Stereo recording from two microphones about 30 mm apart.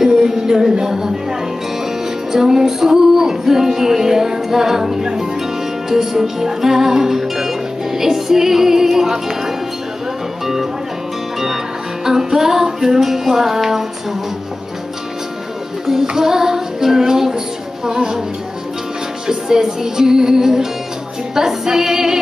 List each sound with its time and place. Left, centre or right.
0.0 s music: centre
2.3 s music: centre
10.4 s speech: centre
11.3 s music: centre
16.2 s music: centre
19.2 s music: centre